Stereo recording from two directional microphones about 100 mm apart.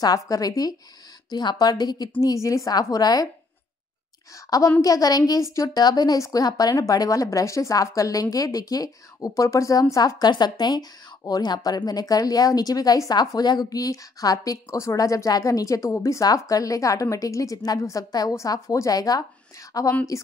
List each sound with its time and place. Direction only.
0.0 s a woman's voice: 40° left (ahead or behind)
4.5 s a woman's voice: 35° left (ahead or behind)